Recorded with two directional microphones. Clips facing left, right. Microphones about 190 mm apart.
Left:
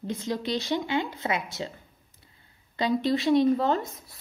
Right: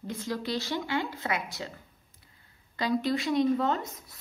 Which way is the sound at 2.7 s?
25° left (ahead or behind).